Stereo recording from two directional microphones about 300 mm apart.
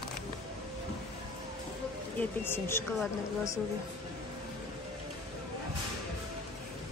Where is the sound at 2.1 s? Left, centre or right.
Centre.